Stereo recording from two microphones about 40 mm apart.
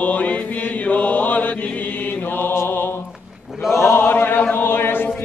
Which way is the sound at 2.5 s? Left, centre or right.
Left.